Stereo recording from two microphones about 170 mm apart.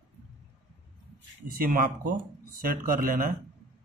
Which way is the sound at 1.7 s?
50° right (ahead or behind).